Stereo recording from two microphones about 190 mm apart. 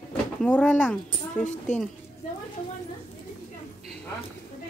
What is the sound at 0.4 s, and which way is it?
Speech, 5° left (ahead or behind).